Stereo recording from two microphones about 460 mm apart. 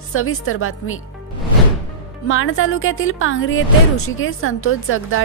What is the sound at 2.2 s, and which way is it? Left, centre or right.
A woman's voice, left.